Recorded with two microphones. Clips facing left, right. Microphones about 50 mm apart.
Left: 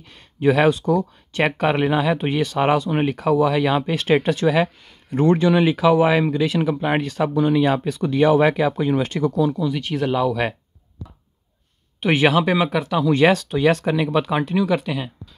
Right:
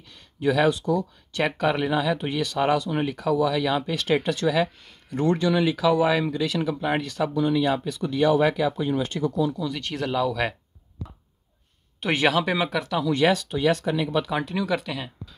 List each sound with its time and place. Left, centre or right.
0.1 s speech: left
7.3 s speech: left
9.8 s speech: centre
10.0 s speech: left
12.0 s speech: centre
13.1 s speech: left
14.4 s speech: centre